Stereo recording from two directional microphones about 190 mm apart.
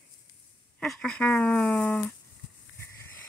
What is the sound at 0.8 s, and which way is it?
Speech, 5° left (ahead or behind).